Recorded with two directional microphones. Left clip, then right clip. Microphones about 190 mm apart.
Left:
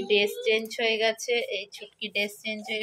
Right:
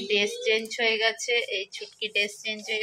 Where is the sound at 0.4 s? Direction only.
5° left (ahead or behind).